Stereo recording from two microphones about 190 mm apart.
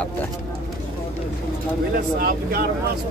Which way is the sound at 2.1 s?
50° right (ahead or behind).